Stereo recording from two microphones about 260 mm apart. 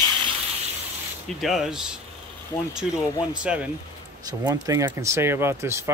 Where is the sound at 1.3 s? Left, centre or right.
Centre.